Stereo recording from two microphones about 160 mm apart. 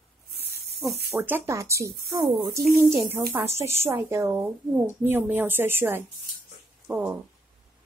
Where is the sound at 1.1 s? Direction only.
15° right (ahead or behind).